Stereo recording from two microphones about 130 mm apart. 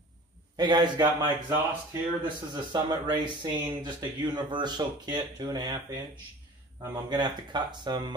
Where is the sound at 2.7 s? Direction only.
35° right (ahead or behind).